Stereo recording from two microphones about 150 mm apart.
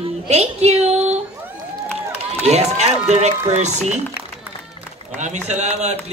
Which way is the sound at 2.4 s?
45° right (ahead or behind).